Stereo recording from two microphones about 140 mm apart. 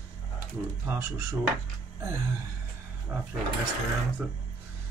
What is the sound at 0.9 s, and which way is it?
Speech, 20° right (ahead or behind).